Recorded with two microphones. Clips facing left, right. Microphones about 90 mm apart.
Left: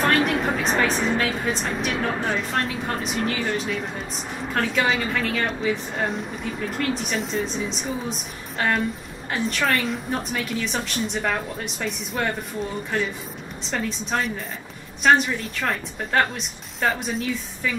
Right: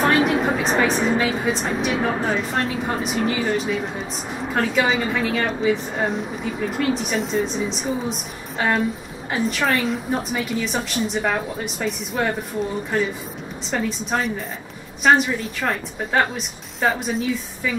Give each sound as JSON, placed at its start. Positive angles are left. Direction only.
{"t": 0.0, "sound": "a woman's voice", "side_deg": -5}